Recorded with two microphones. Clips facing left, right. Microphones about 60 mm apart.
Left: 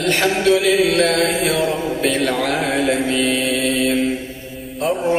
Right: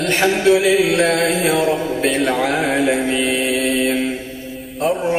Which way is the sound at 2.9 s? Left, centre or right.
Centre.